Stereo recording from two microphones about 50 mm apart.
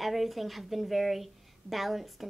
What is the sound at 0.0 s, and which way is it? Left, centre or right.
Speech, centre.